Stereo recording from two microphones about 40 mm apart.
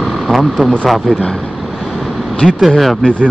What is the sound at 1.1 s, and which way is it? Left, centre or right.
Speech, centre.